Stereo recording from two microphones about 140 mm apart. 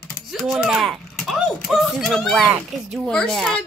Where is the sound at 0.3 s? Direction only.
Centre (ahead or behind).